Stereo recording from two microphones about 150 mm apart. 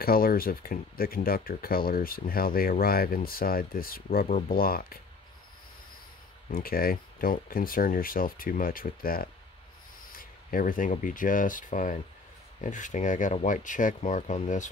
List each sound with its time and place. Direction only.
0.0 s speech: 80° left
6.5 s speech: 75° left (ahead or behind); by 14.7 s 55° left (ahead or behind)